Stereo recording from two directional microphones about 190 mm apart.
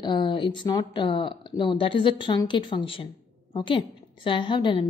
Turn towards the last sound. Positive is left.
turn(degrees=25)  # may be behind; listen again after turning